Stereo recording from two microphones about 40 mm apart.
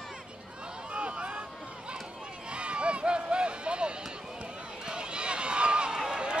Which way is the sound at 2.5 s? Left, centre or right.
Right.